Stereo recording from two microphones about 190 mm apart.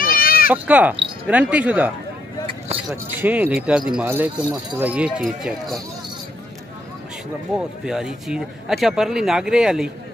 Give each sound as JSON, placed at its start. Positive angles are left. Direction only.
{"t": 0.0, "sound": "bleat", "side_deg": 50}
{"t": 0.5, "sound": "speech", "side_deg": -10}
{"t": 2.9, "sound": "speech", "side_deg": -10}
{"t": 7.5, "sound": "speech", "side_deg": 0}